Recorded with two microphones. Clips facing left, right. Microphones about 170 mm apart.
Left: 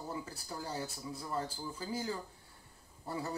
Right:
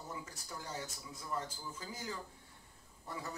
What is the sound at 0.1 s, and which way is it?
Speech, 35° left (ahead or behind).